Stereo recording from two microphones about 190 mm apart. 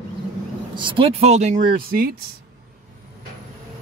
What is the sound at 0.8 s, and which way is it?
Speech, 25° right (ahead or behind).